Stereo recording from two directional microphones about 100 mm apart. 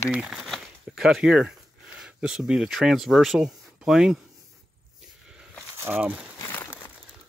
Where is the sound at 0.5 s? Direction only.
5° right (ahead or behind).